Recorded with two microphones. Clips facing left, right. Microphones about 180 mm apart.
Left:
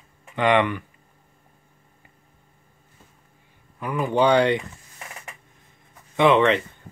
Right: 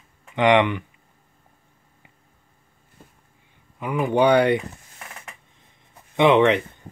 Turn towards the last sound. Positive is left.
turn(degrees=-15)  # may be behind; listen again after turning